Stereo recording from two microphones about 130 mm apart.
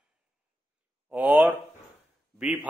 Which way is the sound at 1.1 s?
10° right (ahead or behind).